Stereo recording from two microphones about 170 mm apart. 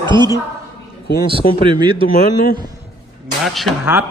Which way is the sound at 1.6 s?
30° right (ahead or behind).